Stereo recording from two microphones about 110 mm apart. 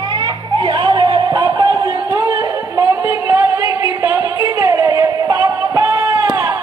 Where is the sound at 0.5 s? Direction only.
45° right (ahead or behind).